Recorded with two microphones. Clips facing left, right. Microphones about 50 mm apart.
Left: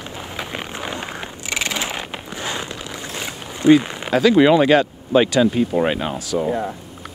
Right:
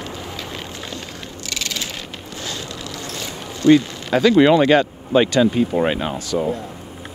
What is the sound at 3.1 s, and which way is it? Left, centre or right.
Boat, left.